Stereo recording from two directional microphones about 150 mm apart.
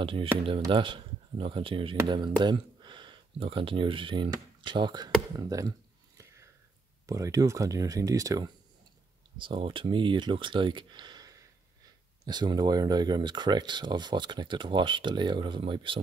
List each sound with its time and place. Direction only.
0.0 s speech: 35° right (ahead or behind)
5.3 s a sound: 25° right (ahead or behind)
7.1 s speech: 20° right (ahead or behind)
9.4 s speech: 35° right (ahead or behind)